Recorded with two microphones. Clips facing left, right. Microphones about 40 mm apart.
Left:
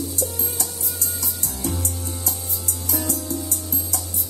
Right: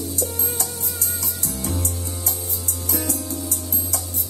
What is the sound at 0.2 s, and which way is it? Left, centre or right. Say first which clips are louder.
Music: right 1 dB; right.